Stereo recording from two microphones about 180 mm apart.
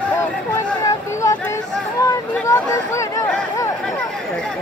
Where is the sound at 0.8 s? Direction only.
15° left (ahead or behind).